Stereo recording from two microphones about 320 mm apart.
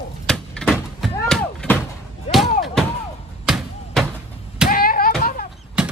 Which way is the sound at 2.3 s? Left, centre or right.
Left.